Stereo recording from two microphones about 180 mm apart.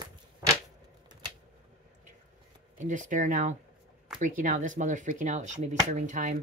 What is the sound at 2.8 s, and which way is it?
Speech, 45° right (ahead or behind).